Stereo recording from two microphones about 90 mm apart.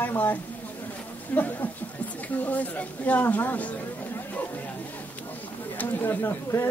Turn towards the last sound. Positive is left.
turn(degrees=25)  # may be behind; listen again after turning